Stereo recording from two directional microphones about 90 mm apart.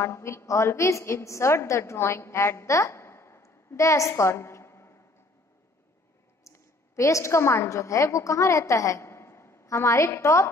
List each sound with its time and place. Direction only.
0.0 s a woman's voice: 30° left (ahead or behind)
4.2 s a sound: 30° left (ahead or behind)
6.4 s a woman's voice: 35° left (ahead or behind)